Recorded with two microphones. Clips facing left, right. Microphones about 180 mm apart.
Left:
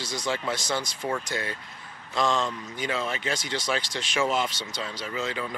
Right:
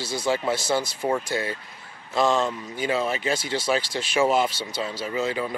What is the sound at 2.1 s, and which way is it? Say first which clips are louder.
Speech: right 4 dB; 5° right (ahead or behind).